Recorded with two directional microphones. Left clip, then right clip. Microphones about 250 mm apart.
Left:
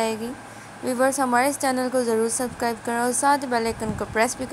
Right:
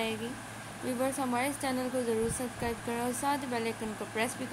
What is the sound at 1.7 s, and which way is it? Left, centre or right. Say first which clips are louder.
A woman's voice: left 10 dB; left.